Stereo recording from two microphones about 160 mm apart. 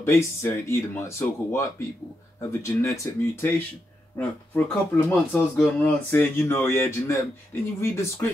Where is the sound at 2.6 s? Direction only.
20° left (ahead or behind).